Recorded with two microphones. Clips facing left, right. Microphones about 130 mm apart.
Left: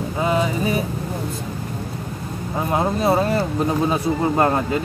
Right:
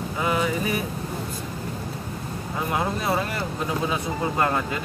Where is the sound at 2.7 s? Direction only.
30° left (ahead or behind).